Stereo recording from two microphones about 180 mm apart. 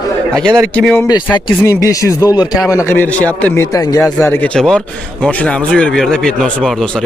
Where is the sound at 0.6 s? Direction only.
5° left (ahead or behind).